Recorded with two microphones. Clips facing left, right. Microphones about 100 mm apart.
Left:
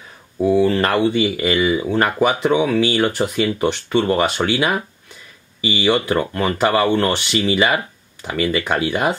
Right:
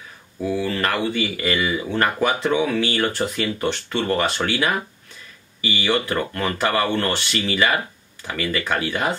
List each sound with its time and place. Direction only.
0.4 s speech: 25° left (ahead or behind)